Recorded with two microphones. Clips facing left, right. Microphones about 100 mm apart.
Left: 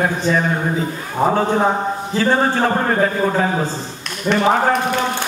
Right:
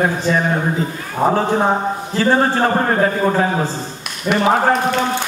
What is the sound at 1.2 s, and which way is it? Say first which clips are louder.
A man's voice: even; centre (ahead or behind).